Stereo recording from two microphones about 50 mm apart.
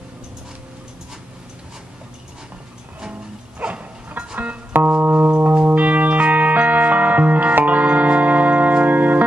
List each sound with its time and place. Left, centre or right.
3.5 s dog: right
5.0 s music: right